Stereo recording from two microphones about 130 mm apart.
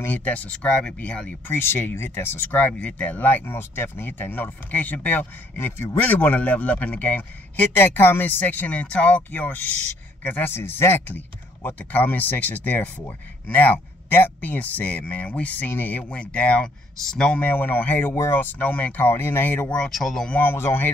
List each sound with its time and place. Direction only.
0.0 s speech: 15° left (ahead or behind)
20.3 s speech: 15° left (ahead or behind)